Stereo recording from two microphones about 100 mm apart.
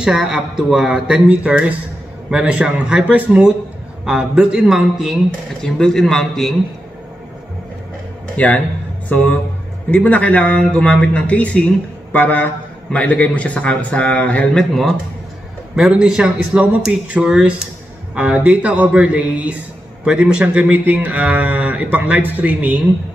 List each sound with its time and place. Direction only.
0.0 s speech: 5° right (ahead or behind)
8.4 s a man's voice: 15° left (ahead or behind)
15.7 s speech: 5° right (ahead or behind)